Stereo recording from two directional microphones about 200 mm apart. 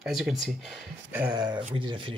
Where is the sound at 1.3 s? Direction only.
20° right (ahead or behind).